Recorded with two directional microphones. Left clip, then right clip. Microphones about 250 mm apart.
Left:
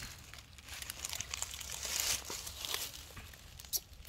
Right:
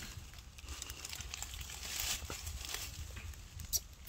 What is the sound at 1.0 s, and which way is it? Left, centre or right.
Crumpling, left.